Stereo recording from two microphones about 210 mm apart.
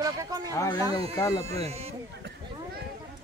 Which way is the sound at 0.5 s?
20° left (ahead or behind).